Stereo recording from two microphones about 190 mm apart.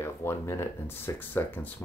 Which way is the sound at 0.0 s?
15° left (ahead or behind).